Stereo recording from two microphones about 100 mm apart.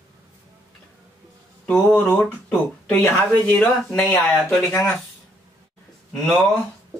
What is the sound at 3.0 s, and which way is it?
Speech, 25° left (ahead or behind).